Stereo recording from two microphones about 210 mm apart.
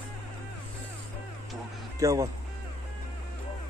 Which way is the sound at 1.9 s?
15° right (ahead or behind).